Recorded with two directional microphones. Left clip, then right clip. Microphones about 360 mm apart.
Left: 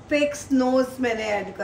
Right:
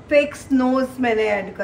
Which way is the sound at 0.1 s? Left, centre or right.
Centre.